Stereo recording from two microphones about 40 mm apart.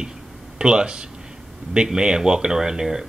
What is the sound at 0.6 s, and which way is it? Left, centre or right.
Speech, right.